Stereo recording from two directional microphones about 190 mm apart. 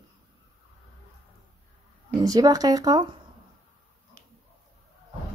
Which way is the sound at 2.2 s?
20° right (ahead or behind).